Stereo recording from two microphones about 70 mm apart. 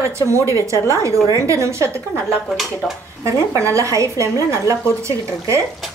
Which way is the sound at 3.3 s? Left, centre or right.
Right.